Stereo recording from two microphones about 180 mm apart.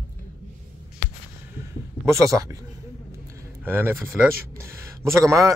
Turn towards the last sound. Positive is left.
turn(degrees=-20)  # may be behind; listen again after turning